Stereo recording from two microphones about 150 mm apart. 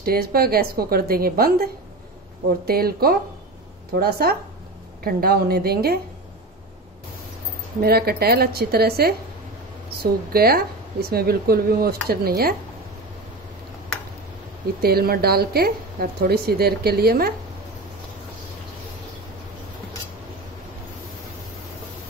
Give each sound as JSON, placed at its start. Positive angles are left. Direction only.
{"t": 0.0, "sound": "a woman's voice", "side_deg": -90}
{"t": 7.8, "sound": "a woman's voice", "side_deg": -90}
{"t": 10.3, "sound": "a woman's voice", "side_deg": -90}
{"t": 14.8, "sound": "a woman's voice", "side_deg": -90}